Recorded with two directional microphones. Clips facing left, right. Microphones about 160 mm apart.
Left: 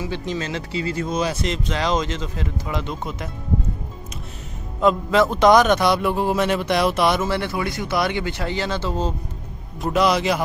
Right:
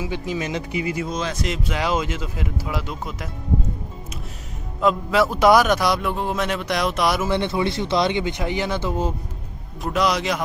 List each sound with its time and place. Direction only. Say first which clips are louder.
0.0 s speech: even; 10° right (ahead or behind)
1.0 s a man's voice: left 3 dB; 5° left (ahead or behind)
4.7 s a man's voice: left 2 dB; centre (ahead or behind)
7.2 s speech: right 2 dB; 20° right (ahead or behind)
9.8 s a man's voice: left 2 dB; centre (ahead or behind)